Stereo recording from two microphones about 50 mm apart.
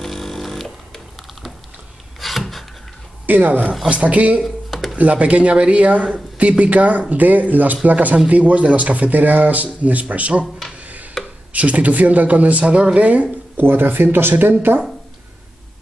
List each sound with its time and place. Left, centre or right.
0.0 s music: centre
2.1 s rub: centre
3.3 s a woman's voice: right
4.6 s a sound: centre
4.9 s speech: right
10.8 s tick-tock: right
11.5 s speech: right
13.6 s speech: right